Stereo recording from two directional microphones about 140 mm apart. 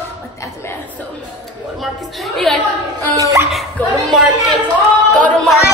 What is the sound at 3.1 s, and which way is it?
Hiccup, 25° right (ahead or behind).